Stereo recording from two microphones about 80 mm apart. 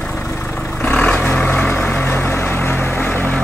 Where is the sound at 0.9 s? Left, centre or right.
Centre.